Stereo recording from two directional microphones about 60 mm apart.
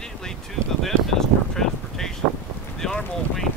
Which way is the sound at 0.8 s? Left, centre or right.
Centre.